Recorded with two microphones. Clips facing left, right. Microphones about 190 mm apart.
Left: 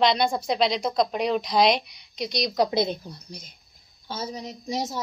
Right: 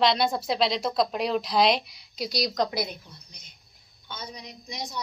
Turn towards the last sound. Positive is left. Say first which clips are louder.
# left 9 dB
turn(degrees=35)  # may be behind; listen again after turning